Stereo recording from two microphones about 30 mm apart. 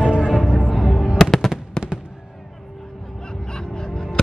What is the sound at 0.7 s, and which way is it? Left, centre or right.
Music, centre.